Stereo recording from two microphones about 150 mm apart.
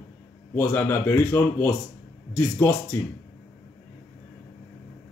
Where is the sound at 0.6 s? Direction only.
15° left (ahead or behind).